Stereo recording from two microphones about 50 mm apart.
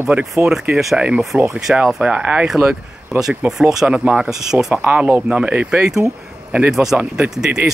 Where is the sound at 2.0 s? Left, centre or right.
Right.